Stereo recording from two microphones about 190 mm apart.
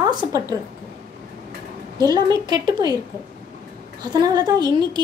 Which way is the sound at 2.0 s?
20° right (ahead or behind).